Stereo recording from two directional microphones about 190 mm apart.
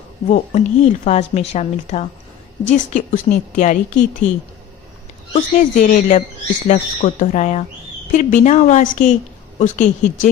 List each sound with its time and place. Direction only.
0.3 s a woman's voice: 40° left (ahead or behind)
5.3 s a woman's voice: 40° left (ahead or behind)